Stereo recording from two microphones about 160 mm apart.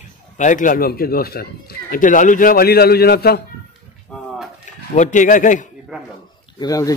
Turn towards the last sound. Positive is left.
turn(degrees=20)  # may be behind; listen again after turning